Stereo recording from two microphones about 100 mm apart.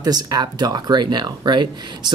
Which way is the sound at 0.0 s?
40° right (ahead or behind).